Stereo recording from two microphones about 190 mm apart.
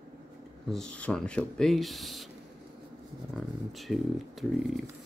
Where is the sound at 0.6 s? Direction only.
5° left (ahead or behind).